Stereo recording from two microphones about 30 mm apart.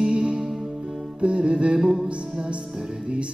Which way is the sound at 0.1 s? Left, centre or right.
Right.